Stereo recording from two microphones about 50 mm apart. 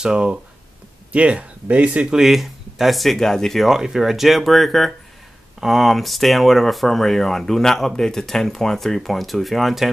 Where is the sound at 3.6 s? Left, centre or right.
Centre.